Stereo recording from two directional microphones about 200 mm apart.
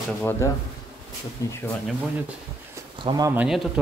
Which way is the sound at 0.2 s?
10° left (ahead or behind).